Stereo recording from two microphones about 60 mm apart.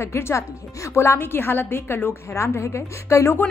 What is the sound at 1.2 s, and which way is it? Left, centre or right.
Speech, left.